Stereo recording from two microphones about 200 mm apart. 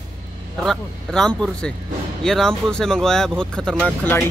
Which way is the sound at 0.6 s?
Centre (ahead or behind).